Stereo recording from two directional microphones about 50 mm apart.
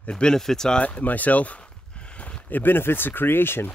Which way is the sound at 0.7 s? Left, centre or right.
Left.